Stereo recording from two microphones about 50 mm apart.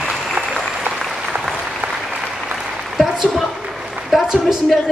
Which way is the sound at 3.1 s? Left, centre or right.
Centre.